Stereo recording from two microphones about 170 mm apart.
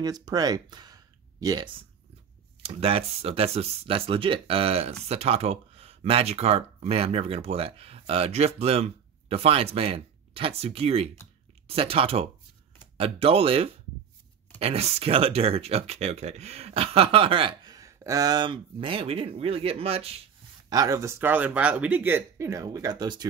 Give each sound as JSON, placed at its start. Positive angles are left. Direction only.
{"t": 0.0, "sound": "speech", "side_deg": -20}
{"t": 20.7, "sound": "speech", "side_deg": -20}